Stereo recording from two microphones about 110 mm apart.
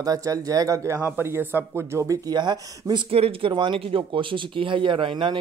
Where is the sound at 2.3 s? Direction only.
40° right (ahead or behind).